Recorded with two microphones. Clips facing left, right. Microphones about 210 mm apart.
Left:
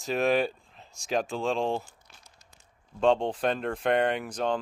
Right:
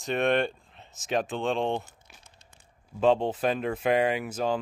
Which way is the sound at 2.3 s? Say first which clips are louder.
Right 1 dB; 30° right (ahead or behind).